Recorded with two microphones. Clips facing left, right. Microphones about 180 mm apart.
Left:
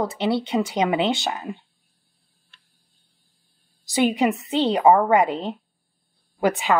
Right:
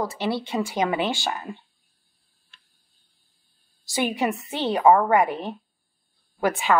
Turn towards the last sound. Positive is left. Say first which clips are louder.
# left 2 dB
turn(degrees=20)  # may be behind; listen again after turning